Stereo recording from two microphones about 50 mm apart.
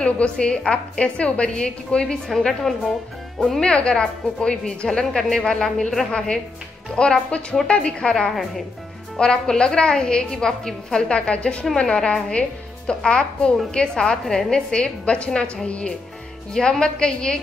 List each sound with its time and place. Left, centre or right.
0.0 s a woman's voice: left
2.2 s a woman's voice: centre
11.1 s a woman's voice: left
14.7 s a woman's voice: left